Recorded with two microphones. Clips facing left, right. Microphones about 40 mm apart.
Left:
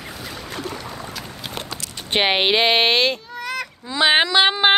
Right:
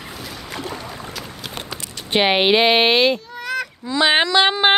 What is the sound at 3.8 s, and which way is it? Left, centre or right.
Speech, centre.